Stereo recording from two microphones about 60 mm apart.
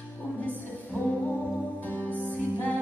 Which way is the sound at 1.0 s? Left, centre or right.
Left.